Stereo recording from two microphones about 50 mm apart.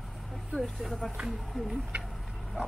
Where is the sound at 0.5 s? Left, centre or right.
Centre.